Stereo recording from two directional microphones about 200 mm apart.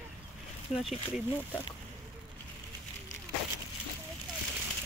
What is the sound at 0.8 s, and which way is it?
Speech, centre (ahead or behind).